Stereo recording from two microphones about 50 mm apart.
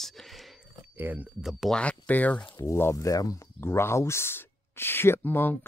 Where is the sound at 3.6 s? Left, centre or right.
Left.